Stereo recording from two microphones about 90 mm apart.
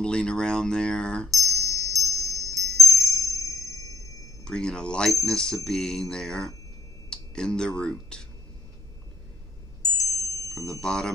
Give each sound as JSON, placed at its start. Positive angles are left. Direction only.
{"t": 0.0, "sound": "speech", "side_deg": 10}
{"t": 1.3, "sound": "chime", "side_deg": 35}
{"t": 4.5, "sound": "speech", "side_deg": 10}
{"t": 9.8, "sound": "chime", "side_deg": 40}
{"t": 10.5, "sound": "speech", "side_deg": 10}